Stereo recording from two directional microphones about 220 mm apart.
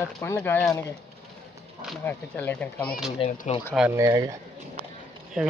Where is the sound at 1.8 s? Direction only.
5° left (ahead or behind).